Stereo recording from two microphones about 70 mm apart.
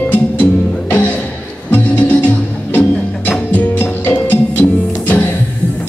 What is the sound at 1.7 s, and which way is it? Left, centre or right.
Music, left.